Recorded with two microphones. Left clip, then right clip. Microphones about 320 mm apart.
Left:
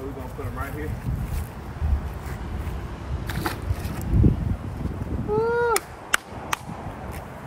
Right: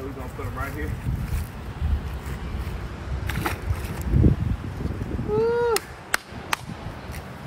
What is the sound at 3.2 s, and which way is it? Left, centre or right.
Single-lens reflex camera, centre.